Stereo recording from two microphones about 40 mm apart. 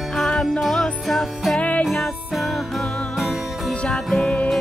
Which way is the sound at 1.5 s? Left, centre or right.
Left.